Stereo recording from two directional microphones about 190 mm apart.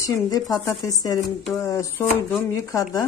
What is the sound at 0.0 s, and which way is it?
A woman's voice, 20° left (ahead or behind).